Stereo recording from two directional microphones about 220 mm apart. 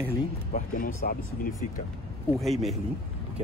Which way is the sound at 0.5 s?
35° left (ahead or behind).